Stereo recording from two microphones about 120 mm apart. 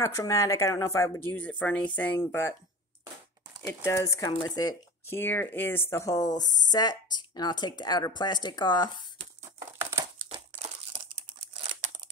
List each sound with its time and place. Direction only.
0.0 s speech: 25° left (ahead or behind)
3.8 s speech: 25° left (ahead or behind)
5.0 s speech: 20° left (ahead or behind); by 8.9 s 35° left (ahead or behind)
9.6 s crumpling: 20° right (ahead or behind)